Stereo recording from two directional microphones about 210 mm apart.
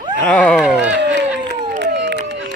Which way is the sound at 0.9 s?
60° right (ahead or behind).